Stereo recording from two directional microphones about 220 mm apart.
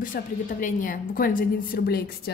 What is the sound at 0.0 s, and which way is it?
A woman's voice, 35° left (ahead or behind).